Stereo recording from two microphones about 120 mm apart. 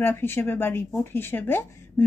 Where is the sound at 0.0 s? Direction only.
20° left (ahead or behind).